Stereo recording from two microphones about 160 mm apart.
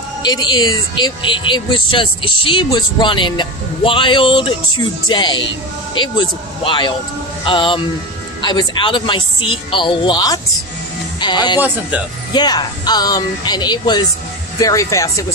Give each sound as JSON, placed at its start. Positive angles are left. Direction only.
{"t": 0.2, "sound": "speech", "side_deg": 25}